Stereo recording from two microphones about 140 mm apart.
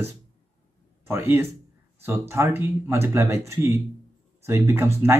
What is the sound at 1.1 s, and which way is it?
Speech, 15° right (ahead or behind).